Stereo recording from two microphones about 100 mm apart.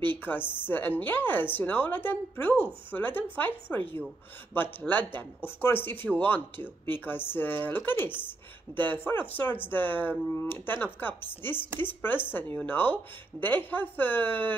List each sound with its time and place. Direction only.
0.1 s a woman's voice: 20° left (ahead or behind)